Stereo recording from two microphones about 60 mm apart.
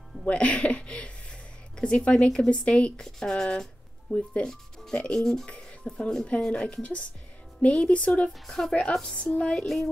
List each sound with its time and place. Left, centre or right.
0.2 s speech: centre
8.3 s speech: centre
9.1 s speech: centre